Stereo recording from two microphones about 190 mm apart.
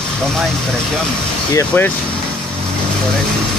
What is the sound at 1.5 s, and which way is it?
Speech, 15° left (ahead or behind).